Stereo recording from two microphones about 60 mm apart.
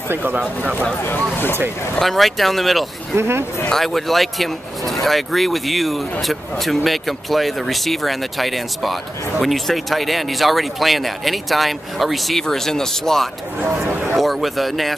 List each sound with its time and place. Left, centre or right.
0.1 s speech: right
1.0 s speech: left
2.0 s speech: centre
3.2 s speech: right
3.7 s speech: centre
13.8 s speech: right
14.1 s speech: centre